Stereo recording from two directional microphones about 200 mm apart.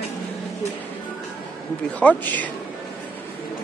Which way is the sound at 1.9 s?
5° left (ahead or behind).